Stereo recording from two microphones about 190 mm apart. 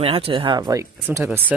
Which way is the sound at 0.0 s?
30° right (ahead or behind).